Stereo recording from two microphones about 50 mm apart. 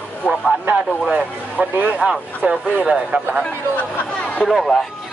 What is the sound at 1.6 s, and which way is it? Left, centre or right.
Speech, right.